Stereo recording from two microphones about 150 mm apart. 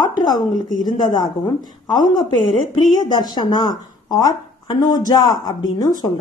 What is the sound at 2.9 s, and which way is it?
Speech, 30° left (ahead or behind).